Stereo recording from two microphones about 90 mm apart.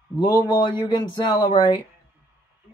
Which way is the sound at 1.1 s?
55° left (ahead or behind).